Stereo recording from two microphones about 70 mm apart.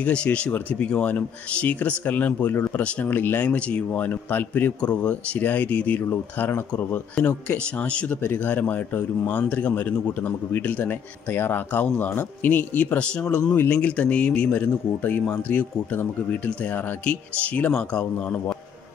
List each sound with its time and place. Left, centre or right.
0.0 s speech: centre
3.4 s speech: centre
5.9 s speech: left
7.2 s speech: centre